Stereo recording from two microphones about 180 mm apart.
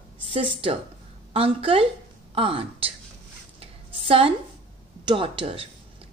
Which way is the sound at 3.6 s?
30° right (ahead or behind).